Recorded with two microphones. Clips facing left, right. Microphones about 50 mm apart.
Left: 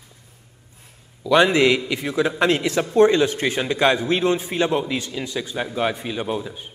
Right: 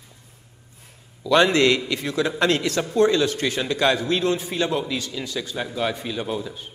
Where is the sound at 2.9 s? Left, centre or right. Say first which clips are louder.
Left 3 dB; left.